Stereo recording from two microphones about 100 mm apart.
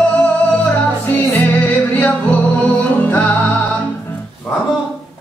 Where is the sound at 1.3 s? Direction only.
15° left (ahead or behind).